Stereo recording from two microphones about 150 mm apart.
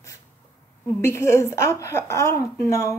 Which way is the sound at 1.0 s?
20° left (ahead or behind).